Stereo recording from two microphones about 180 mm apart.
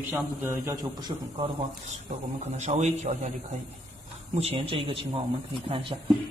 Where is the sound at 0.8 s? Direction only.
25° right (ahead or behind).